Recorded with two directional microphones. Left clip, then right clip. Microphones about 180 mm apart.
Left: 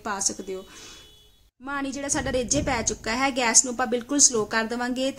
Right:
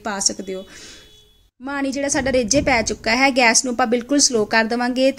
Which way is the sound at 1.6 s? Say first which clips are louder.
Right 7 dB; 15° right (ahead or behind).